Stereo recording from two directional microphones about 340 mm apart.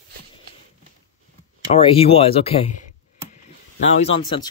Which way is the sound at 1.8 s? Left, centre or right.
Centre.